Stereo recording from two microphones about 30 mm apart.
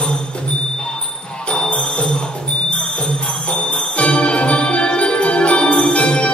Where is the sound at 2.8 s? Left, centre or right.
Left.